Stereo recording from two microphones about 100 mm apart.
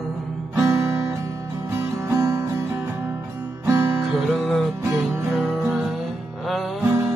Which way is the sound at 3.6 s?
25° right (ahead or behind).